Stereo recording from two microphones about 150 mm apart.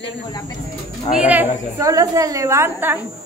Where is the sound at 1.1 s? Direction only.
10° right (ahead or behind).